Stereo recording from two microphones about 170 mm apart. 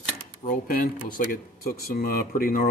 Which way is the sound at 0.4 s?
50° left (ahead or behind).